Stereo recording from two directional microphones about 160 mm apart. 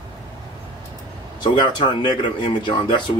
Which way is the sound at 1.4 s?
30° left (ahead or behind).